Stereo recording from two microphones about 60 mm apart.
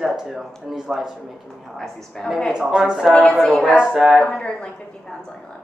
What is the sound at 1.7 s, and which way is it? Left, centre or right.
Speech, centre.